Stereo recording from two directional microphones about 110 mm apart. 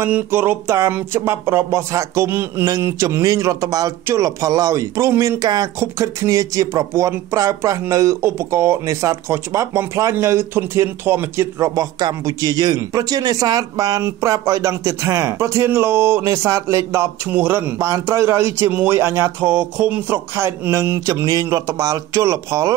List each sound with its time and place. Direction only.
0.0 s speech: 20° right (ahead or behind)